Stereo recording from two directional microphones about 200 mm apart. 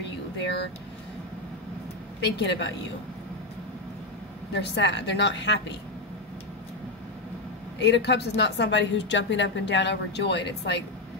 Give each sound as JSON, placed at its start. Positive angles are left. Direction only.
{"t": 2.2, "sound": "a woman's voice", "side_deg": 60}
{"t": 4.6, "sound": "a woman's voice", "side_deg": 60}
{"t": 7.8, "sound": "a woman's voice", "side_deg": 60}